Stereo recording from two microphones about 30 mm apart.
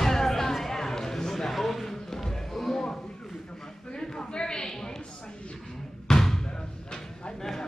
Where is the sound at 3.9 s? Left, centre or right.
Left.